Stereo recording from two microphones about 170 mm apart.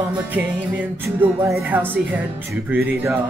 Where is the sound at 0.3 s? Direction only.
10° right (ahead or behind).